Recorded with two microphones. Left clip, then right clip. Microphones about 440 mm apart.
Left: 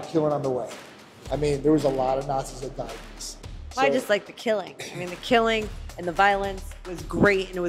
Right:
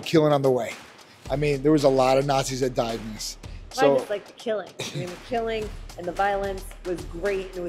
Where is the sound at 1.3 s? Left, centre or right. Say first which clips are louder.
Right 1 dB; right.